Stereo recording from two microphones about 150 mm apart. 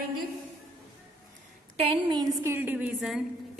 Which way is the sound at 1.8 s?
35° right (ahead or behind).